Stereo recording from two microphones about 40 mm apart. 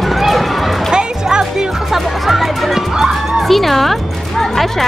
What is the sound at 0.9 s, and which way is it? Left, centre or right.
Music, centre.